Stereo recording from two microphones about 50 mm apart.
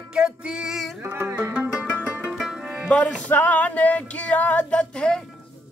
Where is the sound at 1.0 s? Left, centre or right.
Right.